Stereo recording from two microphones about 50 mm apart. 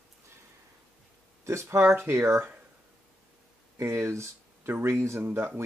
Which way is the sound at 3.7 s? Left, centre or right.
Right.